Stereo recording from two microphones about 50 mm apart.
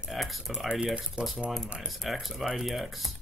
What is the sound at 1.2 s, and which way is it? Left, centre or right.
Speech, right.